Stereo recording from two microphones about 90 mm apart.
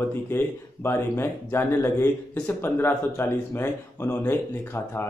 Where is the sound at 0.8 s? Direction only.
25° left (ahead or behind).